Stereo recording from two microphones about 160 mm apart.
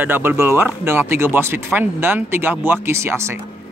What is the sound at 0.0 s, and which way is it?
Speech, 10° right (ahead or behind).